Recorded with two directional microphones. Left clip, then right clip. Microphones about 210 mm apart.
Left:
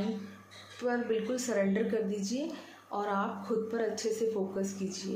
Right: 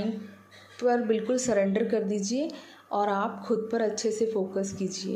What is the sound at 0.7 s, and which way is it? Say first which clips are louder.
A woman's voice: right 6 dB; 30° right (ahead or behind).